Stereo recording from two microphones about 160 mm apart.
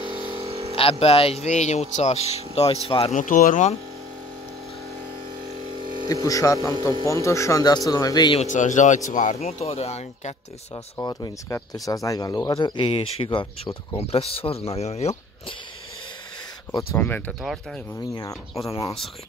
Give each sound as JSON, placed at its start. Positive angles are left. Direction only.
{"t": 0.0, "sound": "a sound", "side_deg": -35}
{"t": 0.7, "sound": "speech", "side_deg": 35}
{"t": 3.2, "sound": "speech", "side_deg": 60}
{"t": 6.2, "sound": "speech", "side_deg": 20}
{"t": 8.4, "sound": "speech", "side_deg": 50}
{"t": 11.0, "sound": "speech", "side_deg": 25}
{"t": 16.7, "sound": "speech", "side_deg": 15}